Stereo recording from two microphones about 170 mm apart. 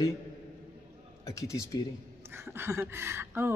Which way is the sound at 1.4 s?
20° left (ahead or behind).